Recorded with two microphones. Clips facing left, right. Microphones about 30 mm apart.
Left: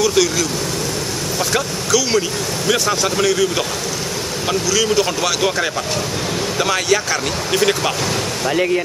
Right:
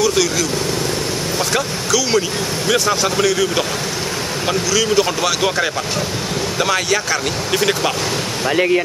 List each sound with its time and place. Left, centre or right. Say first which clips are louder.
0.0 s speech: even; centre
1.5 s speech: left 2 dB; centre
8.5 s speech: right 2 dB; centre